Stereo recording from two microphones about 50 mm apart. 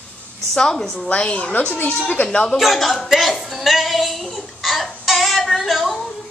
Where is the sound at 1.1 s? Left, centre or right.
Left.